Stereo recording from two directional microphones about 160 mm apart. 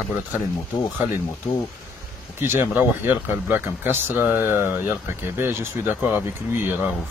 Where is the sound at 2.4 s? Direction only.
15° right (ahead or behind).